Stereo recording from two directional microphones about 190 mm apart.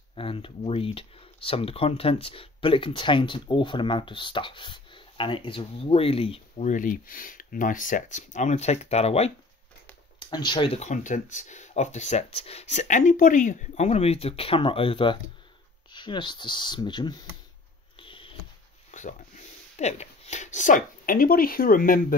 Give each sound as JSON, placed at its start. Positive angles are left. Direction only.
{"t": 0.1, "sound": "speech", "side_deg": 30}
{"t": 17.9, "sound": "a sound", "side_deg": 25}
{"t": 18.9, "sound": "speech", "side_deg": 40}